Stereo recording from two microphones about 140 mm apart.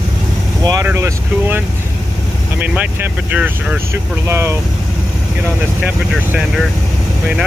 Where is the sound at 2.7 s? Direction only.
10° right (ahead or behind).